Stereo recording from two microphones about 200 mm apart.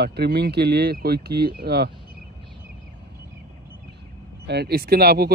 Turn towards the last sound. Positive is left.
turn(degrees=-50)  # may be behind; listen again after turning